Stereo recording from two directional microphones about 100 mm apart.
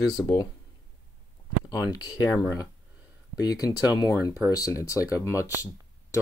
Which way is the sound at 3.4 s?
40° left (ahead or behind).